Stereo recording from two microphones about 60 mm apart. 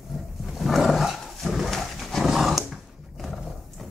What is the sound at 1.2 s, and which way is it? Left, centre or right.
Dog, centre.